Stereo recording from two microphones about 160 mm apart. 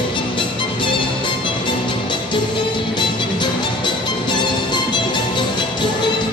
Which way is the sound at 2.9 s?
30° left (ahead or behind).